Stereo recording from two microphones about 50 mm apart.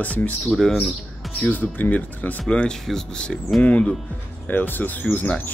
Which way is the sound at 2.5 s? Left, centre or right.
Centre.